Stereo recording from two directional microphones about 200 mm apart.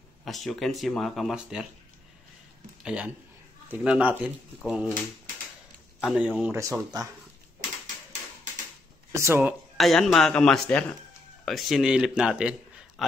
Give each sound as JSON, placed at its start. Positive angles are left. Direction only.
{"t": 0.2, "sound": "a man's voice", "side_deg": 0}
{"t": 2.8, "sound": "a man's voice", "side_deg": -5}
{"t": 5.9, "sound": "a man's voice", "side_deg": 0}
{"t": 9.1, "sound": "a man's voice", "side_deg": -10}
{"t": 12.2, "sound": "a sound", "side_deg": -5}